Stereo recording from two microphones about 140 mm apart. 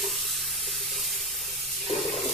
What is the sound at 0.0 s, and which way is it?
Sizzle, centre (ahead or behind).